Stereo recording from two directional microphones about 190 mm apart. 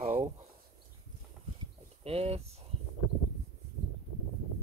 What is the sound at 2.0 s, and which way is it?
Speech, 30° right (ahead or behind).